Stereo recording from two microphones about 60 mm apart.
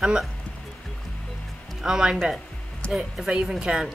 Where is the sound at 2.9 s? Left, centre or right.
Centre.